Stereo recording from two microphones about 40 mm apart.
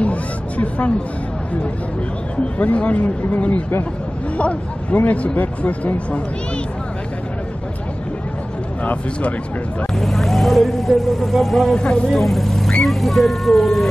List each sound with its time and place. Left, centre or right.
0.0 s a sound: left
2.6 s speech: left
4.9 s speech: left
9.9 s speech: centre
11.7 s speech: centre
12.1 s speech: centre